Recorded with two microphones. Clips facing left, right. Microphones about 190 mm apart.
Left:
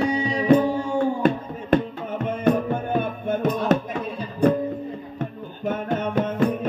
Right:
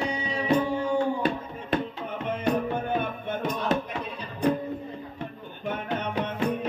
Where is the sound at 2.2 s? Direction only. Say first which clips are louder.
Left 5 dB; 50° left (ahead or behind).